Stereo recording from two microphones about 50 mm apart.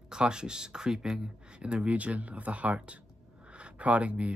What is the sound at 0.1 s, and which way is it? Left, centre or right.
Speech, centre.